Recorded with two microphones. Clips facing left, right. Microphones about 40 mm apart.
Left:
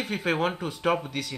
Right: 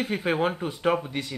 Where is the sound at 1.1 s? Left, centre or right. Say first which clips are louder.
Right 1 dB; right.